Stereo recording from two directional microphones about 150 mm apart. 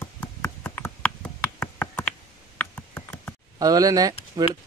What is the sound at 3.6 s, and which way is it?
Speech, 25° right (ahead or behind).